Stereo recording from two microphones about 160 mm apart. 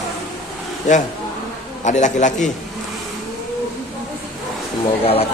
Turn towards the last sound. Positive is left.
turn(degrees=35)  # may be behind; listen again after turning